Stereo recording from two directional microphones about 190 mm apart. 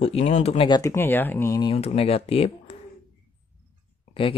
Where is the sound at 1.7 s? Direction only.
30° left (ahead or behind).